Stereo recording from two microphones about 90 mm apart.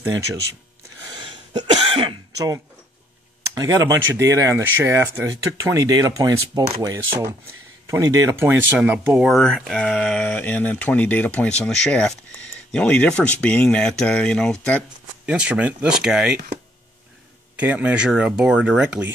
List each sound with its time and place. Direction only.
1.1 s cough: 55° right (ahead or behind); by 2.1 s 70° right (ahead or behind)
2.3 s speech: 40° right (ahead or behind)
5.6 s speech: 45° right (ahead or behind)
8.7 s speech: 20° right (ahead or behind)
9.2 s speech: centre (ahead or behind)
15.2 s speech: 15° right (ahead or behind)
17.6 s speech: 15° right (ahead or behind)